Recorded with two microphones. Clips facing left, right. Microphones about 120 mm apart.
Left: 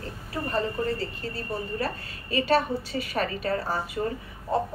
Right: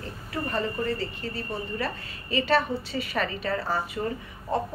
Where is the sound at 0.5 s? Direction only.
35° left (ahead or behind).